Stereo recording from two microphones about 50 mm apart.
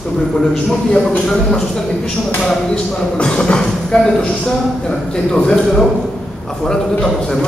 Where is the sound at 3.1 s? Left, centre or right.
Centre.